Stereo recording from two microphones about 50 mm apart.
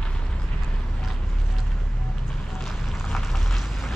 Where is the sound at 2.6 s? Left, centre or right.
Centre.